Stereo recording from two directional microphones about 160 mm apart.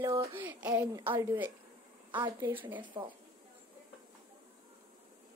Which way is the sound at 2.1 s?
30° right (ahead or behind).